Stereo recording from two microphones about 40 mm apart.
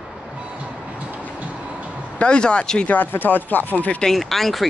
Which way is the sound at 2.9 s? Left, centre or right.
Left.